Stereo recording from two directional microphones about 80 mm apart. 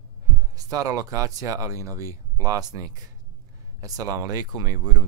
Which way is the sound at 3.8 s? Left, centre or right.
Right.